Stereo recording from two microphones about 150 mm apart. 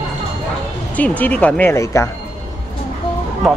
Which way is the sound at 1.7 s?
20° left (ahead or behind).